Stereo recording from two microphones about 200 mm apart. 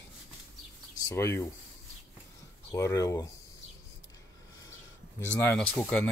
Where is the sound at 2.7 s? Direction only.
15° left (ahead or behind).